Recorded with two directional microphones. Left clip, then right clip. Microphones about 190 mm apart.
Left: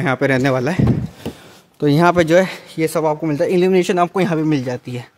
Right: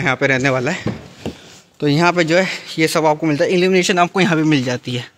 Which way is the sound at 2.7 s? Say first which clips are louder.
Right 3 dB; centre (ahead or behind).